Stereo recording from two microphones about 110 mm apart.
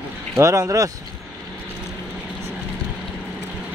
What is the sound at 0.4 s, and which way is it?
Speech, 30° right (ahead or behind).